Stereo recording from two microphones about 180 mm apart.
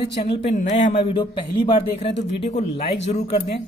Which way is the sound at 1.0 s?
30° left (ahead or behind).